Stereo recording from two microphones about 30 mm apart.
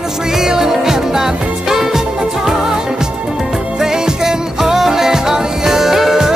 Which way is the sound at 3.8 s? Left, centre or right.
Centre.